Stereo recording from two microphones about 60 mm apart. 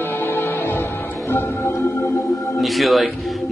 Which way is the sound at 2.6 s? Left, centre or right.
Centre.